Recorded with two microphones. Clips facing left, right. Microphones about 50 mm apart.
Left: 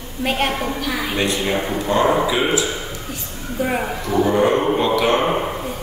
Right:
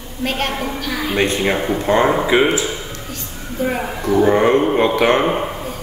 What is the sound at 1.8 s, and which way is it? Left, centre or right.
Speech, right.